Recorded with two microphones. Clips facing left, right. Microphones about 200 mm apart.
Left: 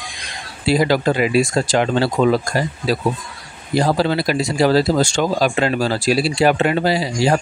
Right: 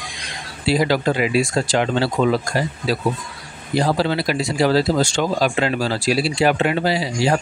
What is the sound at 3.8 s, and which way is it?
Speech, 40° left (ahead or behind).